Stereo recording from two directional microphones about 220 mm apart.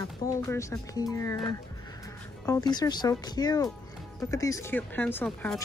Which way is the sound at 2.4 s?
15° left (ahead or behind).